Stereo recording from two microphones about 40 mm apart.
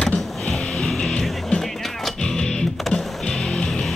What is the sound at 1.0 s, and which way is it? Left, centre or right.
Music, left.